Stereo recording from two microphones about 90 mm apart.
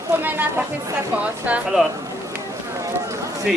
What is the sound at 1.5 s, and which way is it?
Speech, 15° right (ahead or behind).